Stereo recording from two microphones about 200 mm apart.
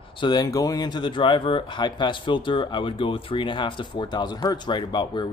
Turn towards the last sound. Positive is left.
turn(degrees=20)  # may be behind; listen again after turning